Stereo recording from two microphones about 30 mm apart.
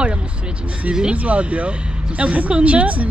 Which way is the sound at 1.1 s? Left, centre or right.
Right.